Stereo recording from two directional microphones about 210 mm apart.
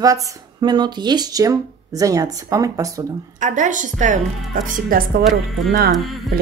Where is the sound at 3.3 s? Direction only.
35° right (ahead or behind).